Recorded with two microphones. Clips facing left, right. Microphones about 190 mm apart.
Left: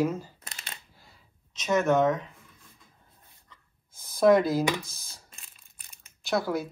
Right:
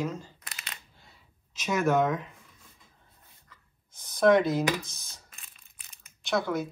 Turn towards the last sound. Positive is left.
turn(degrees=0)  # may be behind; listen again after turning